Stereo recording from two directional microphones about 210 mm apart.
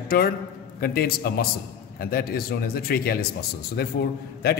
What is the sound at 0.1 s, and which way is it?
A man's voice, 45° left (ahead or behind).